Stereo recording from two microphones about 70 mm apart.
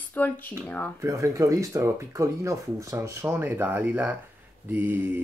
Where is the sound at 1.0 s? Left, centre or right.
Right.